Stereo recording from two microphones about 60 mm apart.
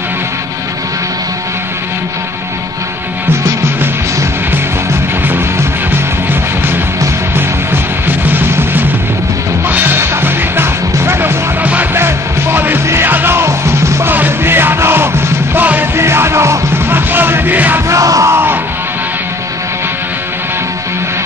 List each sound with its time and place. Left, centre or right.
5.3 s music: right
7.3 s music: right
14.0 s music: right
17.8 s music: right
18.3 s music: right